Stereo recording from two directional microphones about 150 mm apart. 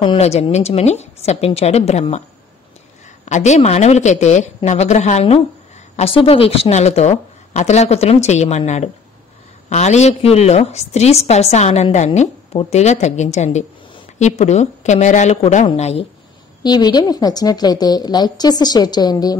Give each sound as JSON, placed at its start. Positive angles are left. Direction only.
{"t": 0.2, "sound": "a woman's voice", "side_deg": 45}
{"t": 3.3, "sound": "a woman's voice", "side_deg": 50}
{"t": 16.6, "sound": "a woman's voice", "side_deg": 25}